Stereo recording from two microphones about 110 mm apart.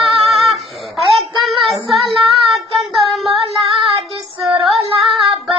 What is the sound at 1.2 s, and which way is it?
Child singing, centre (ahead or behind).